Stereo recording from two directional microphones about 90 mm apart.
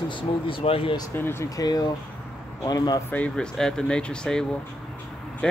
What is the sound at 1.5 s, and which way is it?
Speech, 45° left (ahead or behind).